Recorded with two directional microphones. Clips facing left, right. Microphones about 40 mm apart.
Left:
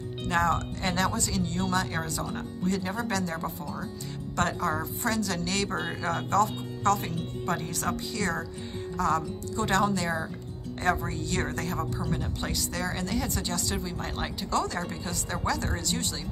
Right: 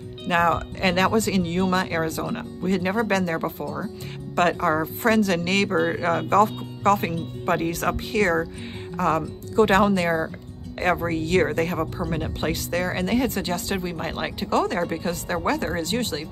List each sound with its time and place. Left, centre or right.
0.3 s speech: right